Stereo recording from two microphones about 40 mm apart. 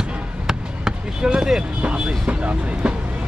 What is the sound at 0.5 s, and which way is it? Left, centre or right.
Basketball bounce, centre.